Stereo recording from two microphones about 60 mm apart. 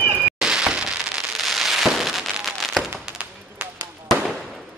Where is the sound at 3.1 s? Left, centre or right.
Right.